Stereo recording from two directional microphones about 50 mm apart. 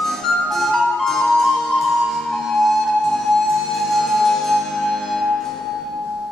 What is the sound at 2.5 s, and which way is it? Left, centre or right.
Music, centre.